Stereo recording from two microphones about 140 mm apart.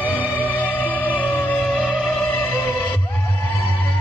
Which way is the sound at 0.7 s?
10° left (ahead or behind).